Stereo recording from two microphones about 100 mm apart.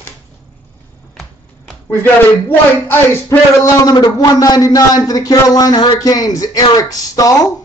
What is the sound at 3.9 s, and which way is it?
A man's voice, 40° left (ahead or behind).